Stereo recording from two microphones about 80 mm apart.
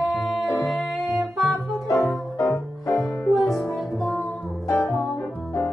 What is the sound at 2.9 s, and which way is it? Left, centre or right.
Music, left.